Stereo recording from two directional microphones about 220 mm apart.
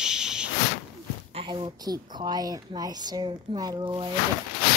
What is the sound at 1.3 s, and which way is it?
A woman's voice, 25° right (ahead or behind).